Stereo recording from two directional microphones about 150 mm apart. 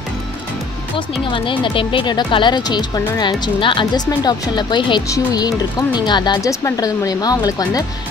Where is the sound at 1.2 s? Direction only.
30° left (ahead or behind).